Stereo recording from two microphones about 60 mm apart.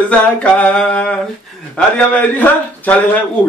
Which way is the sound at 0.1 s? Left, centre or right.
Left.